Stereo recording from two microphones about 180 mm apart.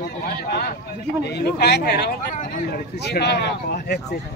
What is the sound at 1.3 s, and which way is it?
Speech, 65° left (ahead or behind).